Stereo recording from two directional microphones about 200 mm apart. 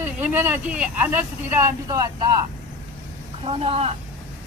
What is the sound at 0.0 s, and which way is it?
Speech, 10° right (ahead or behind).